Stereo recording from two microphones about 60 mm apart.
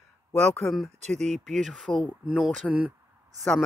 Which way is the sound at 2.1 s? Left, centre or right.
Centre.